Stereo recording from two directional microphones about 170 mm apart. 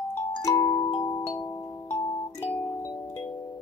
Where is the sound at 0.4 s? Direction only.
20° left (ahead or behind).